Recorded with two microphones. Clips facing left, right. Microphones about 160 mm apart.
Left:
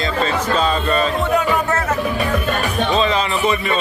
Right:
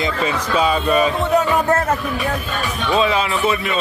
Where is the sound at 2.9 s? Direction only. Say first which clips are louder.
Right 3 dB; 5° right (ahead or behind).